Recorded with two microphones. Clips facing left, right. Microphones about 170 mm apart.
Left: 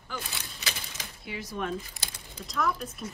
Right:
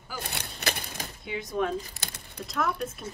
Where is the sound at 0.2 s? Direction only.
60° right (ahead or behind).